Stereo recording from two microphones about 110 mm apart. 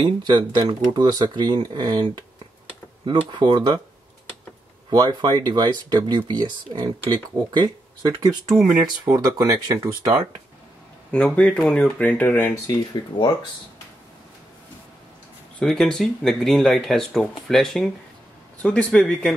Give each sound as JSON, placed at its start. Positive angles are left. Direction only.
{"t": 0.0, "sound": "speech", "side_deg": -45}
{"t": 3.1, "sound": "speech", "side_deg": -40}
{"t": 4.8, "sound": "speech", "side_deg": -40}
{"t": 11.1, "sound": "speech", "side_deg": 10}
{"t": 12.6, "sound": "speech", "side_deg": 40}
{"t": 15.6, "sound": "speech", "side_deg": 5}